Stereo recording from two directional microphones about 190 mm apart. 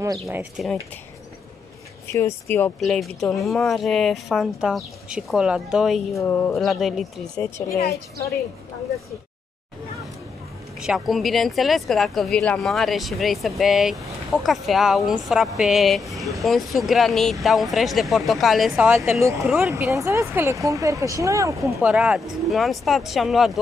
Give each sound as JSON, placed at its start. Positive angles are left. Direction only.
{"t": 0.0, "sound": "speech", "side_deg": -15}
{"t": 2.5, "sound": "speech", "side_deg": 5}
{"t": 6.1, "sound": "speech", "side_deg": 10}
{"t": 7.6, "sound": "a woman's voice", "side_deg": 15}
{"t": 10.8, "sound": "speech", "side_deg": 0}
{"t": 18.9, "sound": "speech", "side_deg": -15}